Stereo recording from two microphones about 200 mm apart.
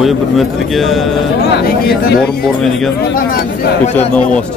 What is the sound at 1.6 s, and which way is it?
Speech, 50° left (ahead or behind).